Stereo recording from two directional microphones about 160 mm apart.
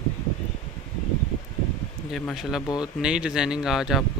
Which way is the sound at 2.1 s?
Centre (ahead or behind).